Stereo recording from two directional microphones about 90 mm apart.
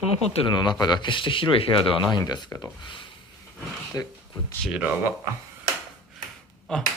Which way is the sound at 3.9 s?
35° left (ahead or behind).